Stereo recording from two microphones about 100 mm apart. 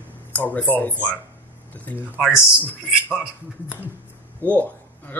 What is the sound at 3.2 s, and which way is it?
Speech, 15° right (ahead or behind).